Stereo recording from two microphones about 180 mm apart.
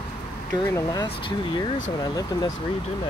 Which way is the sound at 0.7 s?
20° left (ahead or behind).